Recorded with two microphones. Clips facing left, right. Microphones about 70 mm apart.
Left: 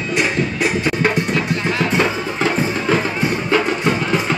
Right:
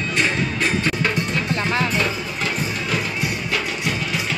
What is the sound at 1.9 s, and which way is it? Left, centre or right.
Music, left.